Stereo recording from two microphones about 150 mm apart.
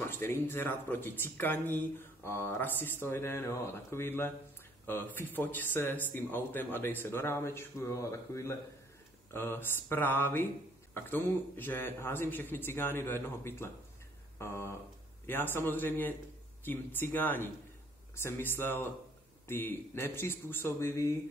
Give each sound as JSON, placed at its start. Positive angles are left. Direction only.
{"t": 0.0, "sound": "speech", "side_deg": 15}